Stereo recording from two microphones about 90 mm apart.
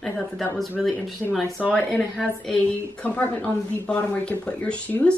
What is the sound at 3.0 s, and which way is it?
Speech, 20° left (ahead or behind).